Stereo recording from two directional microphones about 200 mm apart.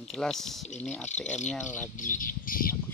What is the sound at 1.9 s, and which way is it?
Speech, 40° left (ahead or behind).